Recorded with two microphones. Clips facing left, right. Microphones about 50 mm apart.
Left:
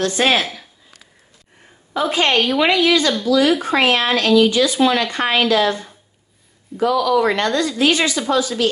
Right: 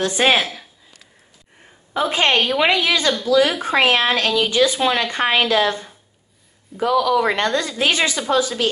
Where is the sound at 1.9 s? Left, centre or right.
Right.